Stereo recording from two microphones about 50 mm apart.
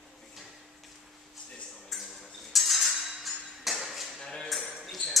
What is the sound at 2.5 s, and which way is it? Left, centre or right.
Cutlery, centre.